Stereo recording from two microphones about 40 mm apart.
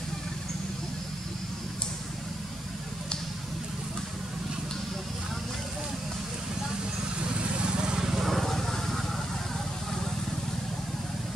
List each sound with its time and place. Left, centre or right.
7.2 s vehicle: right
8.0 s vehicle: centre